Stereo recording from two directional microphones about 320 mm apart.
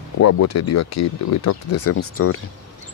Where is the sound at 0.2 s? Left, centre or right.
Left.